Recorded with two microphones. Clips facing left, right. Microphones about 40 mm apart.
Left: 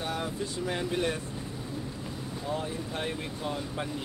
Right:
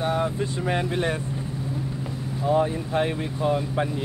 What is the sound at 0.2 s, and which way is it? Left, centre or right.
Speech, right.